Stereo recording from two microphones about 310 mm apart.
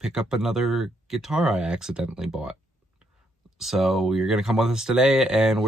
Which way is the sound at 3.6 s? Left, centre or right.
Centre.